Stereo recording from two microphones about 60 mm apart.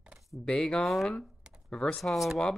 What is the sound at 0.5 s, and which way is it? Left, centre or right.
Speech, centre.